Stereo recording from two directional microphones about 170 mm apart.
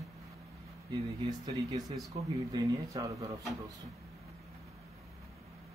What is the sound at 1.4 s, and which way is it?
A man's voice, 25° right (ahead or behind).